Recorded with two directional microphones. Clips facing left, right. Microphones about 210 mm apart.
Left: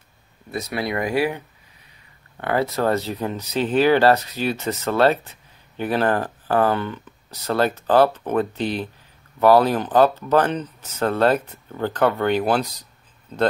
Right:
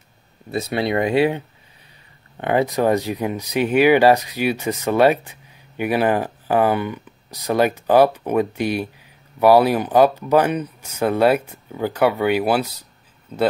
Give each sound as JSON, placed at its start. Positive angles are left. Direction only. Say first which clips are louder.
{"t": 0.5, "sound": "speech", "louder": "right 4 dB", "side_deg": -25}